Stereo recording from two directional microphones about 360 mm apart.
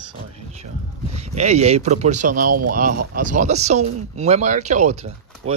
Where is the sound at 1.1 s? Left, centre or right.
Centre.